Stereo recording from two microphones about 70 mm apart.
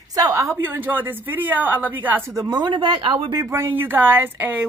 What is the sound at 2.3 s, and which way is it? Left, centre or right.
Speech, right.